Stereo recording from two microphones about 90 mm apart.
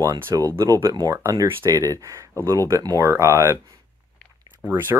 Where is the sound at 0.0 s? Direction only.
40° right (ahead or behind).